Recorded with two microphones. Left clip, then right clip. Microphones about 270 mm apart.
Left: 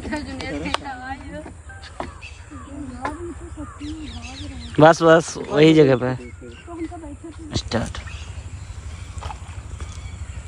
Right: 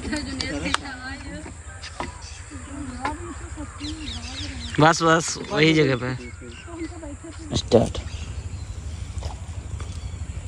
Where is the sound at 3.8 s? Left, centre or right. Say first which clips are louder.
Right 2 dB; centre.